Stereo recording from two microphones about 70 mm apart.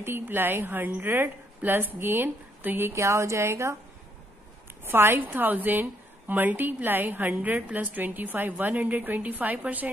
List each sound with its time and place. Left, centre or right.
0.0 s a woman's voice: right
2.9 s speech: right
4.8 s a woman's voice: right